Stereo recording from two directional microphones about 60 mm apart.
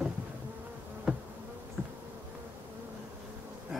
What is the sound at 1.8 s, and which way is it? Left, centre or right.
Insect, right.